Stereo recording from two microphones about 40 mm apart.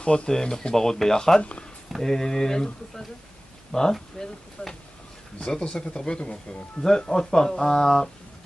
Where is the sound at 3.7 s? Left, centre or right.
Centre.